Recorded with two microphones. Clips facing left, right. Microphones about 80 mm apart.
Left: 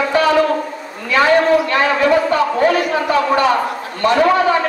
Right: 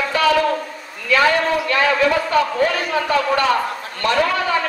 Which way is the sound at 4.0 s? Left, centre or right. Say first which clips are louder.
Left 6 dB; left.